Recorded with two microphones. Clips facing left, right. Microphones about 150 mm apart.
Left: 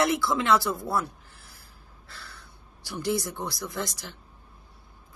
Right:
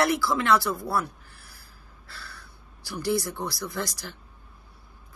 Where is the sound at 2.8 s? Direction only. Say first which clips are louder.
Right 1 dB; 20° left (ahead or behind).